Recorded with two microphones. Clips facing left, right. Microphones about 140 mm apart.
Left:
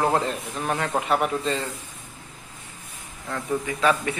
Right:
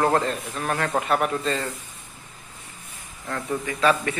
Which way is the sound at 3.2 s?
5° left (ahead or behind).